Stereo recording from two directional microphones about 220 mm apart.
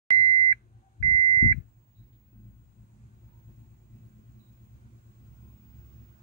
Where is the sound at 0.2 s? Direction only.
20° left (ahead or behind).